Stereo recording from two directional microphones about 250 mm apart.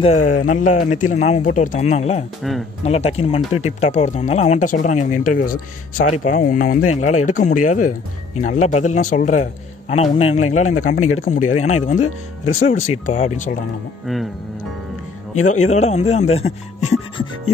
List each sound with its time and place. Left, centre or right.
0.0 s speech: left
6.8 s speech: left
7.2 s speech: left
10.4 s speech: left
11.1 s speech: left
15.4 s speech: left